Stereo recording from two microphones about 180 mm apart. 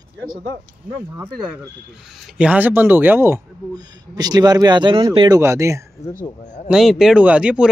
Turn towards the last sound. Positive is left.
turn(degrees=-5)  # may be behind; listen again after turning